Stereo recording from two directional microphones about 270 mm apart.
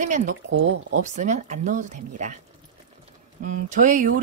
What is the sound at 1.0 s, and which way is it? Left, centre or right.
Speech, right.